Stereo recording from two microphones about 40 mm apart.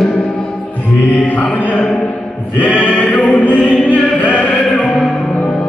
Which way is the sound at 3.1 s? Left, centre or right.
Left.